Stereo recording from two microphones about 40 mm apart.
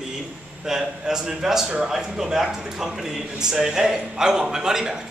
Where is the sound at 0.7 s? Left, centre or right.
Centre.